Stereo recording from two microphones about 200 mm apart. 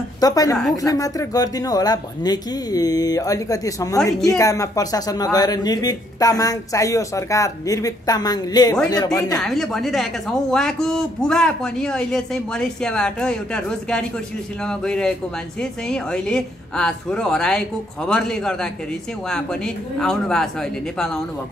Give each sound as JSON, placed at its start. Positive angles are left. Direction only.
{"t": 0.2, "sound": "speech", "side_deg": 20}
{"t": 9.4, "sound": "speech", "side_deg": 0}